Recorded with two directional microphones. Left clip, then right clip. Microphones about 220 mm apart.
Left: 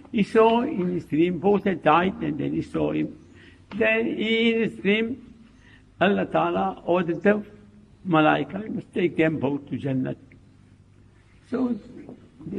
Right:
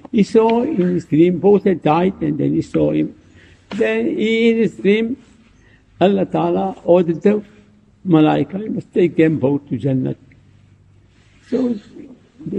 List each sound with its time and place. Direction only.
0.1 s a man's voice: 20° right (ahead or behind)